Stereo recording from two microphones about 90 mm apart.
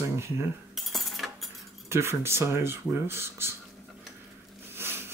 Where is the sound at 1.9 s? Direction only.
30° right (ahead or behind).